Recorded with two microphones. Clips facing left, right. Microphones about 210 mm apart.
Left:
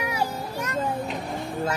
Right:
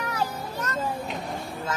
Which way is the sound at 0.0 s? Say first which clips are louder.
Left 2 dB; 10° left (ahead or behind).